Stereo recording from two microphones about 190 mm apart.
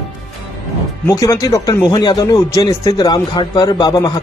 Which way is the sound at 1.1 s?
15° left (ahead or behind).